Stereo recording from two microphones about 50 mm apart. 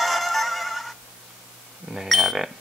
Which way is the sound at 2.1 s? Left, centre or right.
Centre.